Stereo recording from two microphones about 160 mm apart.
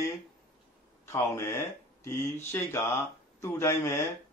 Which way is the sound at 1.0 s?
20° left (ahead or behind).